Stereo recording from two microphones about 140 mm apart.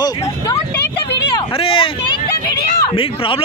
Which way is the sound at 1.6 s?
40° left (ahead or behind).